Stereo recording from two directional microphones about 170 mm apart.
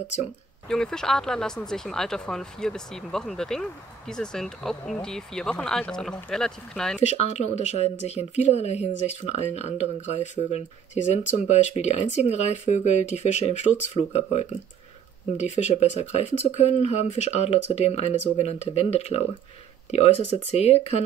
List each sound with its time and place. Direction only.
0.7 s speech: 5° left (ahead or behind)
7.0 s speech: 40° left (ahead or behind)
20.5 s speech: 35° left (ahead or behind)